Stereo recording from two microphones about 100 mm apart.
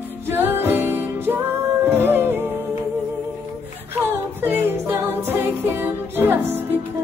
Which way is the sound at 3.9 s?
20° right (ahead or behind).